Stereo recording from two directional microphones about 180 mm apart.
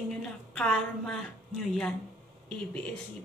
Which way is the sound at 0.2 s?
5° left (ahead or behind).